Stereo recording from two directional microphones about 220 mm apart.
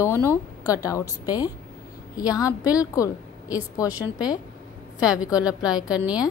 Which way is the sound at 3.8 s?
5° right (ahead or behind).